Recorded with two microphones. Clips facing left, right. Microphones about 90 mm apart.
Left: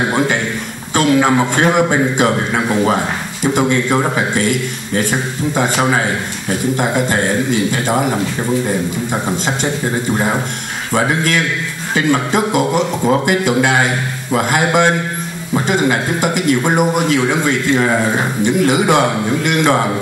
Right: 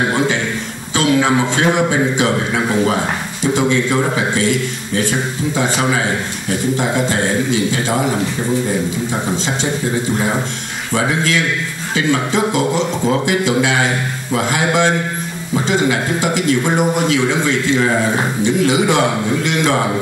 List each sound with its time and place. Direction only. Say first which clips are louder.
0.9 s a man's voice: left 2 dB; 50° left (ahead or behind)
10.9 s a man's voice: left 1 dB; 50° left (ahead or behind)